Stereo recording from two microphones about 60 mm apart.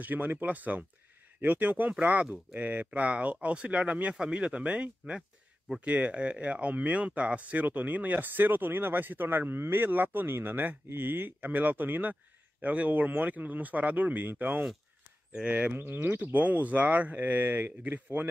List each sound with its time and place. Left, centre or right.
0.0 s speech: right
15.7 s speech: right